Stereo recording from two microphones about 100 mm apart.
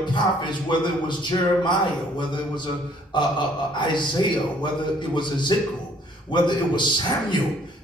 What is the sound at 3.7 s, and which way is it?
A man's voice, 50° left (ahead or behind).